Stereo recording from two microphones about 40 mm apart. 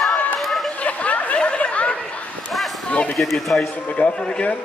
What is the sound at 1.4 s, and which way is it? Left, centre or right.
Snicker, left.